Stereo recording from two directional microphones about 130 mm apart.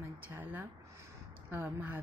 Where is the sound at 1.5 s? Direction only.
15° right (ahead or behind).